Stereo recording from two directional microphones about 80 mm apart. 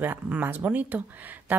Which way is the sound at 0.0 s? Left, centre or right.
Right.